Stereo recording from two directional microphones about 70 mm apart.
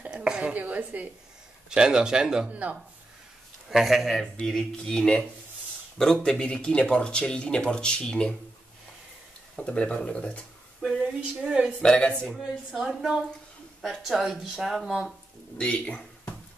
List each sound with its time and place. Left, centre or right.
0.0 s a sound: centre
1.7 s speech: centre
3.7 s speech: centre
6.2 s speech: centre
9.6 s speech: centre
11.0 s speech: centre
11.8 s speech: centre
12.3 s speech: centre
15.5 s speech: centre